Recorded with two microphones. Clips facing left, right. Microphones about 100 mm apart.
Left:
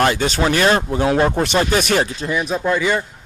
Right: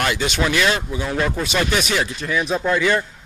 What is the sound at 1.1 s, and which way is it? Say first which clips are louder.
Speech: left 3 dB; 35° left (ahead or behind).